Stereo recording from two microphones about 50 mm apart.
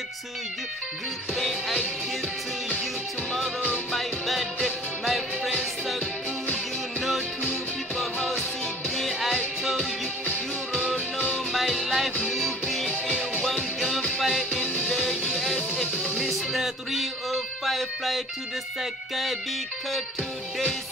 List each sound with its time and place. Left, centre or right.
3.9 s music: centre
8.2 s music: left
8.9 s music: centre
9.6 s music: centre
10.2 s music: left
11.3 s music: centre
14.2 s music: centre
14.6 s music: left
16.3 s music: centre